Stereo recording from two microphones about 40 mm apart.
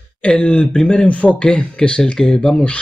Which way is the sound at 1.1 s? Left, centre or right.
Left.